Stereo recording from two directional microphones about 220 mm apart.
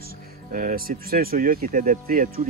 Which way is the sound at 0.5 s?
40° right (ahead or behind).